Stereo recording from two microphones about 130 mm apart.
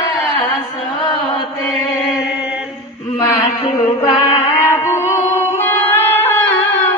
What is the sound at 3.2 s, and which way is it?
Music, 20° left (ahead or behind).